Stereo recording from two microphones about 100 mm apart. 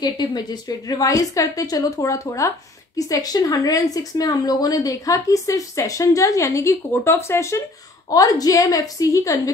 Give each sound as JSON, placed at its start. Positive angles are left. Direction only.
{"t": 0.0, "sound": "speech", "side_deg": 45}